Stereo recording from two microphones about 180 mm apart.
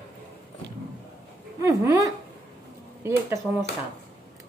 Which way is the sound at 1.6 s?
15° right (ahead or behind).